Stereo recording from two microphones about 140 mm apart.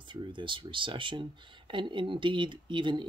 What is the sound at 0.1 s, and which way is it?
Speech, 35° right (ahead or behind).